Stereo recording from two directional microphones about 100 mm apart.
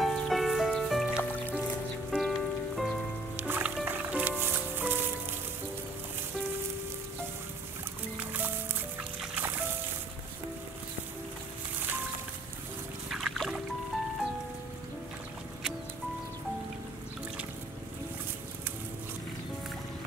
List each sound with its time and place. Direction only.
0.0 s music: centre (ahead or behind)
1.1 s music: 20° left (ahead or behind)
2.0 s rain on surface: centre (ahead or behind)
3.3 s music: 20° right (ahead or behind)
8.2 s music: 20° right (ahead or behind)
13.1 s music: centre (ahead or behind)